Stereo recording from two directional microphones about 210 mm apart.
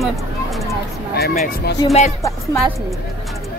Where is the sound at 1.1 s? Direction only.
45° left (ahead or behind).